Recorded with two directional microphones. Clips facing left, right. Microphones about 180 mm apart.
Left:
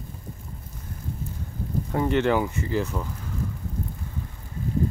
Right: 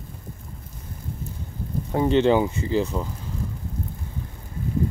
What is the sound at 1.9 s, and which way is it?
Speech, 20° right (ahead or behind).